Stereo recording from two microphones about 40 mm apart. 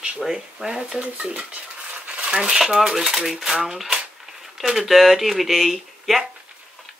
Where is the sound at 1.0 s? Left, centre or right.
Right.